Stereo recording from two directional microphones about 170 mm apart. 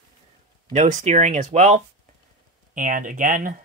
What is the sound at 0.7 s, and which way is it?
Speech, 45° right (ahead or behind).